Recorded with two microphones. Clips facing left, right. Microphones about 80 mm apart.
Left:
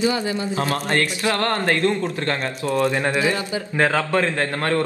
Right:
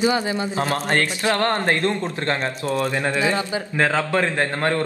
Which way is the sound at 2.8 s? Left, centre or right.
Centre.